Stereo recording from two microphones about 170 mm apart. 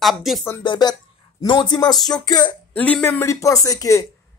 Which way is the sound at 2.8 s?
10° left (ahead or behind).